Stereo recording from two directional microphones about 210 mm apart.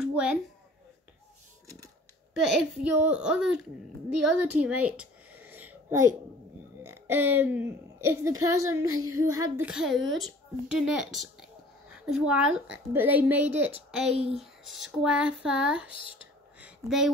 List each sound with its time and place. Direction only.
0.0 s a sound: 5° right (ahead or behind)
2.3 s speech: 5° right (ahead or behind)
4.2 s a sound: 5° right (ahead or behind)
6.8 s a woman's voice: 10° right (ahead or behind)
8.8 s child singing: 85° right
9.2 s a woman's voice: 15° right (ahead or behind)
9.7 s a woman's voice: centre (ahead or behind)
14.1 s speech: 30° right (ahead or behind)
14.4 s speech: centre (ahead or behind)
16.5 s a sound: 5° right (ahead or behind)